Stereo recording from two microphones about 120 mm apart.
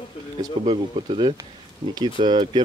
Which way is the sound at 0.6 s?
50° right (ahead or behind).